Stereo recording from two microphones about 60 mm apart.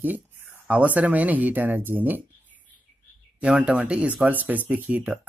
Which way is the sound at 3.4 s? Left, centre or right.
Centre.